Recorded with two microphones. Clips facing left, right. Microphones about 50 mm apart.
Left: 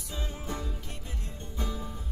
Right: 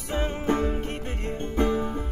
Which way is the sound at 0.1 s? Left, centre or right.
Right.